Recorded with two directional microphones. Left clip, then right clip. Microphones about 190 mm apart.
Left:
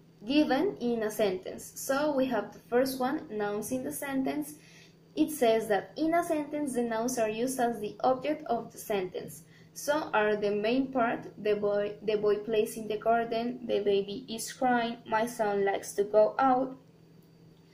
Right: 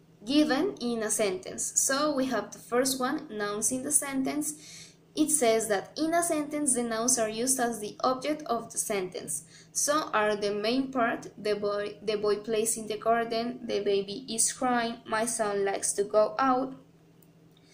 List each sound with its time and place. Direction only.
0.3 s a woman's voice: 5° right (ahead or behind)
13.9 s speech: 50° right (ahead or behind)
14.6 s a woman's voice: 10° right (ahead or behind)